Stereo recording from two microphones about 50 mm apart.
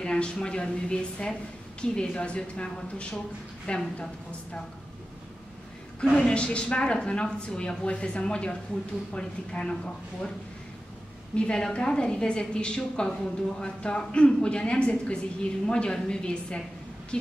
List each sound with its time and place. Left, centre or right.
0.0 s a woman's voice: centre
6.1 s a woman's voice: centre
11.3 s a woman's voice: centre